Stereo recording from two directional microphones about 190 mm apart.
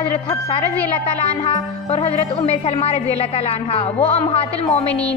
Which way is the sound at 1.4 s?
30° left (ahead or behind).